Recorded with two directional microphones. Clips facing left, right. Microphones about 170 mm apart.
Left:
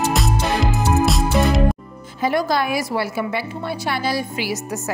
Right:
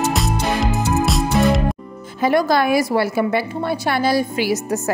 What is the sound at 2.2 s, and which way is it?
A woman's voice, 55° right (ahead or behind).